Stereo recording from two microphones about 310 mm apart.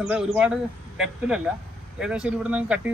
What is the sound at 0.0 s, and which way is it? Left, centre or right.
Speech, centre.